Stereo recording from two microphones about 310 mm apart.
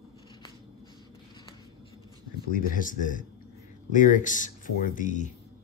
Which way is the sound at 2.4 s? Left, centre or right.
Left.